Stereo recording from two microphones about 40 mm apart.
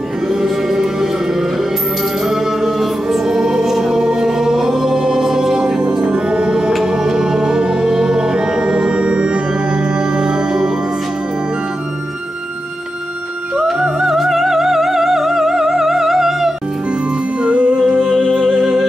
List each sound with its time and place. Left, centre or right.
0.3 s music: centre
2.2 s choir: centre
6.0 s music: right
13.7 s music: centre
17.4 s music: right
18.0 s music: centre